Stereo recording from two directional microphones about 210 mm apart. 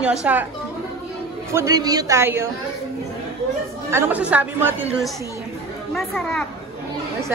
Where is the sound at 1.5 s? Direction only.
15° right (ahead or behind).